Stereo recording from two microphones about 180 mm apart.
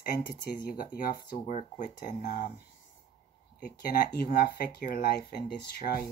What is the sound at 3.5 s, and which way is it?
Speech, 55° left (ahead or behind).